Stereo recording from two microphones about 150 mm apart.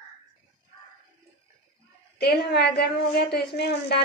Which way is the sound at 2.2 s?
90° left.